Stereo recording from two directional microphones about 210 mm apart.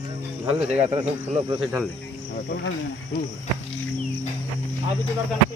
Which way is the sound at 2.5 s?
55° left (ahead or behind).